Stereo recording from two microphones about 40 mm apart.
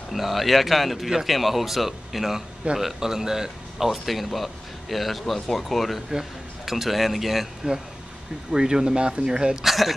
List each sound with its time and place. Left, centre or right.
0.1 s speech: centre
3.7 s speech: centre
8.5 s speech: centre
9.6 s speech: centre